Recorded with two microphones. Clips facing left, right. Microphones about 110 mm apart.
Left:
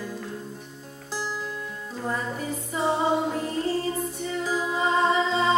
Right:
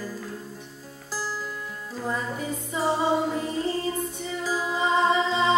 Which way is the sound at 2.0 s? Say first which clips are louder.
Even; centre (ahead or behind).